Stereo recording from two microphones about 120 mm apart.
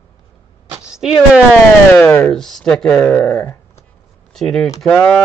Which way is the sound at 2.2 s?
5° left (ahead or behind).